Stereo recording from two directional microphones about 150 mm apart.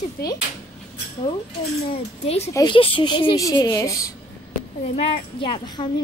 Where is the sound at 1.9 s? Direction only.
45° left (ahead or behind); by 4.1 s 20° left (ahead or behind).